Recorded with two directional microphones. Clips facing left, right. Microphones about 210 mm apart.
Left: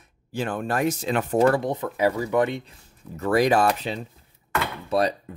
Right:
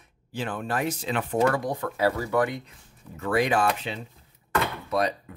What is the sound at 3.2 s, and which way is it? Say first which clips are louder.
Speech: left 4 dB; 40° left (ahead or behind).